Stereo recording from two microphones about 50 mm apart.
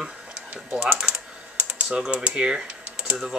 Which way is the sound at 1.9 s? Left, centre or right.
Right.